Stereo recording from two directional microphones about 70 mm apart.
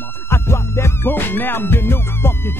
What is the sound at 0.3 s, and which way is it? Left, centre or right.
Music, left.